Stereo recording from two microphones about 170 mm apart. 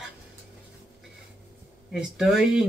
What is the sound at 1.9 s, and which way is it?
Speech, 5° right (ahead or behind).